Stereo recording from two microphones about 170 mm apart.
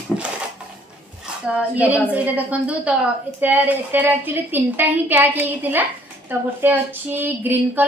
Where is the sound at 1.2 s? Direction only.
5° right (ahead or behind).